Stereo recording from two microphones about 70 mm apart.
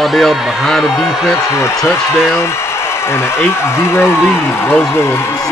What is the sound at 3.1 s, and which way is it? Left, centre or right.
A man's voice, left.